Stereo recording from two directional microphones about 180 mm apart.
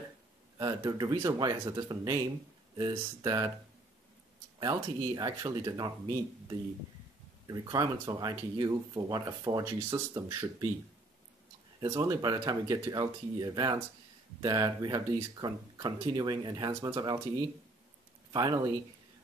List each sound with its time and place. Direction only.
0.6 s speech: 20° right (ahead or behind)
4.6 s speech: 20° right (ahead or behind)
7.4 s speech: 20° right (ahead or behind)
11.8 s speech: 20° right (ahead or behind)
18.3 s speech: 20° right (ahead or behind)